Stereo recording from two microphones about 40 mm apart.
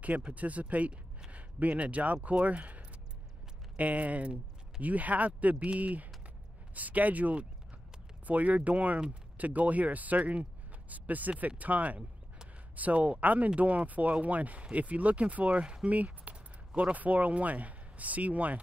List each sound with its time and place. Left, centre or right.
0.0 s speech: right
15.9 s speech: right